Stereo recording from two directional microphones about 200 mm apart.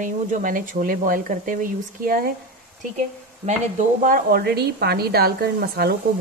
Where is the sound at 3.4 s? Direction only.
40° right (ahead or behind).